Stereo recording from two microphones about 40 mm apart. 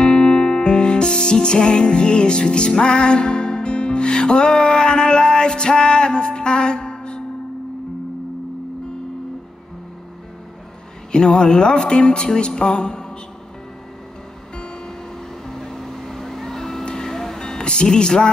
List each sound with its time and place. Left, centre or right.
0.0 s music: left
11.1 s speech: left
15.4 s vehicle: centre
17.1 s music: centre
17.9 s a sound: centre